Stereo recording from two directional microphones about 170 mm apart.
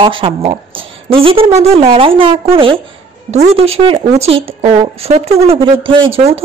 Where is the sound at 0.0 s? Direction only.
30° right (ahead or behind).